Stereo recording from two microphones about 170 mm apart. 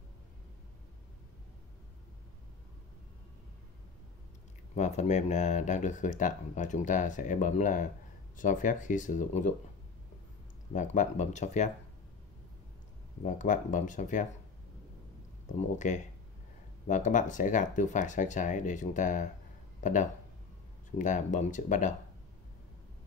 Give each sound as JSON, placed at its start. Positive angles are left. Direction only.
{"t": 4.7, "sound": "speech", "side_deg": 45}
{"t": 10.7, "sound": "speech", "side_deg": 45}
{"t": 13.2, "sound": "speech", "side_deg": 50}
{"t": 15.4, "sound": "speech", "side_deg": 45}